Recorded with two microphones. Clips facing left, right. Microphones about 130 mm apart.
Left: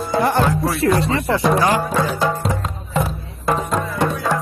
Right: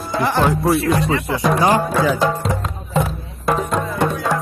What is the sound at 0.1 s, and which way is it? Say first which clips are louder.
Music: left 2 dB; 20° left (ahead or behind).